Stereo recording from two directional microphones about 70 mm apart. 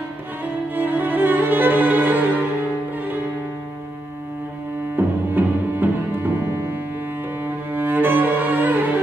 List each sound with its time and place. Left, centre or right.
0.7 s music: right
4.9 s music: right
7.4 s cello: right